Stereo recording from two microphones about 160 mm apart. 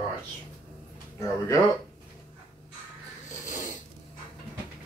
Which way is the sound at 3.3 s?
55° left (ahead or behind).